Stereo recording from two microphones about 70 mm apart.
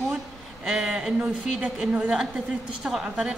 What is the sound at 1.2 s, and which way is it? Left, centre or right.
A woman's voice, centre.